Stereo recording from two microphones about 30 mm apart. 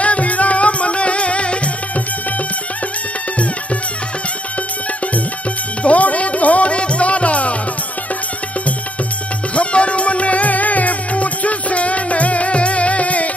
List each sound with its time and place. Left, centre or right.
0.0 s music: left
5.9 s music: left
9.6 s music: left